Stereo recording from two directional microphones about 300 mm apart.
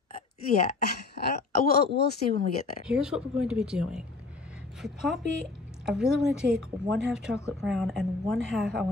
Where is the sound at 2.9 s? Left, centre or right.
Centre.